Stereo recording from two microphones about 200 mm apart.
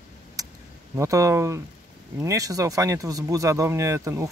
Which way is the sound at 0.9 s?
15° right (ahead or behind).